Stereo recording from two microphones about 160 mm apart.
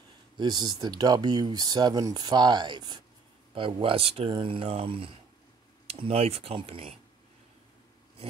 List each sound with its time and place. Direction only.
0.4 s speech: 25° right (ahead or behind)